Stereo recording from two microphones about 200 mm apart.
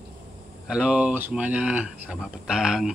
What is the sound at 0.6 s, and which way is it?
A man's voice, 5° right (ahead or behind).